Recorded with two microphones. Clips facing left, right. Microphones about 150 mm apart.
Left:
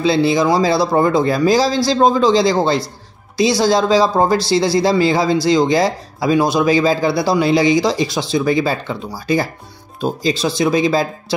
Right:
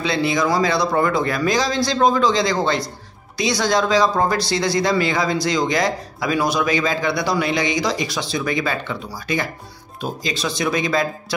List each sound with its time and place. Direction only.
0.0 s speech: 30° left (ahead or behind)